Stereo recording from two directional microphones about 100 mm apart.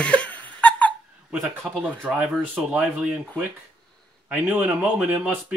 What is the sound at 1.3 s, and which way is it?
Speech, 5° right (ahead or behind).